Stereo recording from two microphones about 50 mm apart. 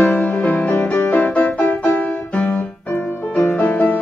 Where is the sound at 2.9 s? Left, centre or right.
Centre.